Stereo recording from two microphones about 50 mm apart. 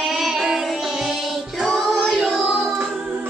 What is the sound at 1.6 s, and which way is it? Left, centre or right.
Music, centre.